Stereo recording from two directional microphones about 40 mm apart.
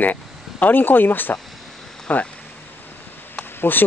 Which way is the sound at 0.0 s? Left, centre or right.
Left.